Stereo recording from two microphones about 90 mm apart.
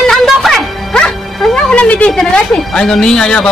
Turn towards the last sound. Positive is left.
turn(degrees=10)  # may be behind; listen again after turning